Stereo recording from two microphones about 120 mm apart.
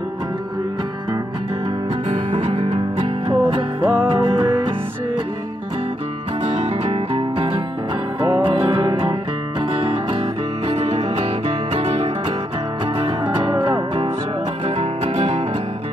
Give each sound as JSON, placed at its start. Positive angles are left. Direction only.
{"t": 2.3, "sound": "music", "side_deg": -45}
{"t": 6.4, "sound": "music", "side_deg": -65}
{"t": 9.6, "sound": "music", "side_deg": -50}
{"t": 10.7, "sound": "music", "side_deg": -65}
{"t": 14.8, "sound": "music", "side_deg": -55}